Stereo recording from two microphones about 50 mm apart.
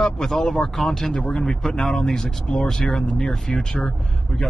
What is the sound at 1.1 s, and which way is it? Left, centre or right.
Speech, centre.